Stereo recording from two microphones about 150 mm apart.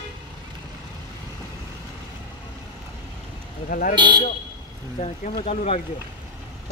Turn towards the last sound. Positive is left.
turn(degrees=45)  # may be behind; listen again after turning